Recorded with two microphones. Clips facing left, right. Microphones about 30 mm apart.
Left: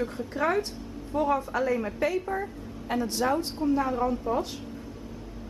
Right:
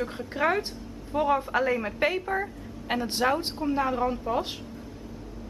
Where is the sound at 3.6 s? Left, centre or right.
Right.